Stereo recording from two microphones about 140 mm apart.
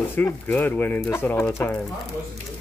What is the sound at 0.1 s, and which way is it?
Speech, 15° left (ahead or behind).